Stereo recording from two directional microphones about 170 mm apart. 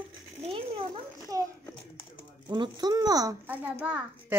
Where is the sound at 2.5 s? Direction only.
25° right (ahead or behind).